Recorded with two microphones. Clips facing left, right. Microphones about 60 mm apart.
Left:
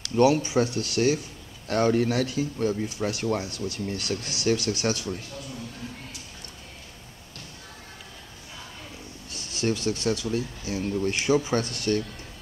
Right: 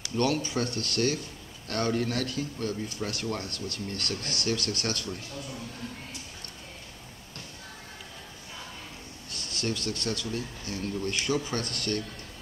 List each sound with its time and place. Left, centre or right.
0.1 s a man's voice: centre
9.3 s a man's voice: centre